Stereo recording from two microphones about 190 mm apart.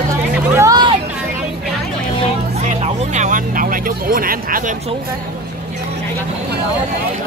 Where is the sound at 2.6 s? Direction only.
40° right (ahead or behind).